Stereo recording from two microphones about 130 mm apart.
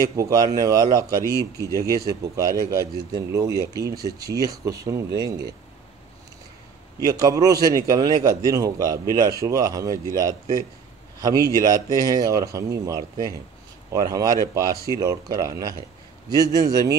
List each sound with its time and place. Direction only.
0.0 s speech: 25° right (ahead or behind)
7.0 s speech: 30° right (ahead or behind)
11.1 s a man's voice: 30° right (ahead or behind)